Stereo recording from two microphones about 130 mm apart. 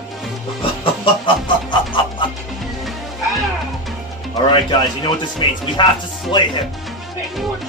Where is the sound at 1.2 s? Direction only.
40° left (ahead or behind).